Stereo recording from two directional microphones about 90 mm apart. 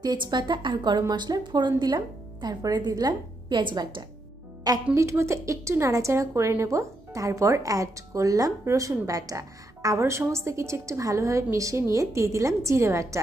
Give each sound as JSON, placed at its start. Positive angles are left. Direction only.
{"t": 0.0, "sound": "a woman's voice", "side_deg": -50}
{"t": 4.9, "sound": "speech", "side_deg": -30}